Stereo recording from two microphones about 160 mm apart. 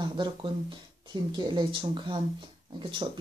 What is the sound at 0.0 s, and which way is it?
Speech, 30° right (ahead or behind).